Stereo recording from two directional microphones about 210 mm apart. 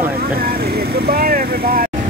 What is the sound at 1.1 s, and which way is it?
Speech, 45° right (ahead or behind).